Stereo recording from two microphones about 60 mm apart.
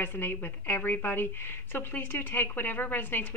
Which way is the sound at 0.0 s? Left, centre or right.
Left.